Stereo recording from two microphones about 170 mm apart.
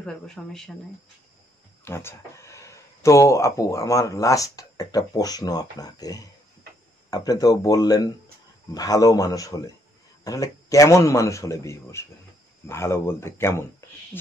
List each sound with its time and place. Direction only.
0.0 s speech: 5° left (ahead or behind)
1.9 s a man's voice: 15° left (ahead or behind)